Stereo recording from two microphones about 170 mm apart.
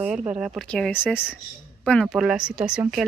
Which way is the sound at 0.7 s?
5° left (ahead or behind).